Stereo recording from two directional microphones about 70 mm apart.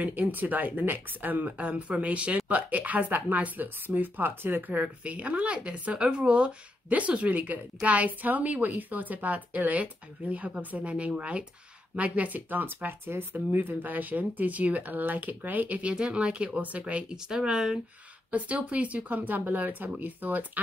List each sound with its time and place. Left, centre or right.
0.0 s speech: right; by 17.7 s centre
18.3 s speech: centre